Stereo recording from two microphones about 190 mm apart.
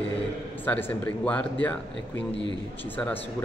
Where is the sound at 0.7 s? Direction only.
10° left (ahead or behind).